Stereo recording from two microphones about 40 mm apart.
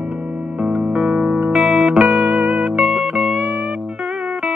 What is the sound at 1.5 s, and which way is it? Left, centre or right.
Music, centre.